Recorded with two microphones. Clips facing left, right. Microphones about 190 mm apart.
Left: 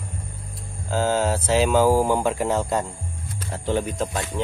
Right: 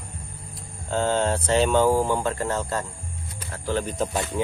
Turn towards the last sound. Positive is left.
turn(degrees=-10)  # may be behind; listen again after turning